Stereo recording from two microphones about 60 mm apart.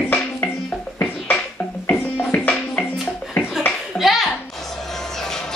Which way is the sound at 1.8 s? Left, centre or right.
Left.